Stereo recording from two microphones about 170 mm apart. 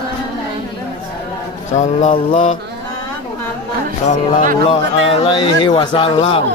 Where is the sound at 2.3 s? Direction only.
45° left (ahead or behind).